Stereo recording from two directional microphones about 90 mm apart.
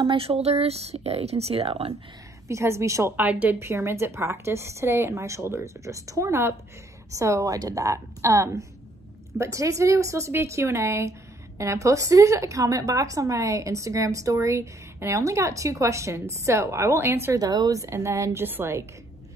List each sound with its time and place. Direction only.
0.0 s speech: 80° right
2.4 s a woman's voice: 30° right (ahead or behind)
3.2 s a woman's voice: 20° right (ahead or behind)
3.5 s a woman's voice: 30° right (ahead or behind)
17.4 s a woman's voice: 45° right (ahead or behind); by 18.9 s 25° right (ahead or behind)